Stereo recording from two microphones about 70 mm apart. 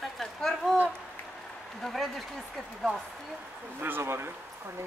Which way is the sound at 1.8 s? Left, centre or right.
Centre.